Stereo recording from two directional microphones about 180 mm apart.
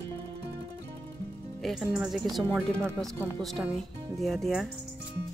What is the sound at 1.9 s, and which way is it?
Speech, 5° right (ahead or behind).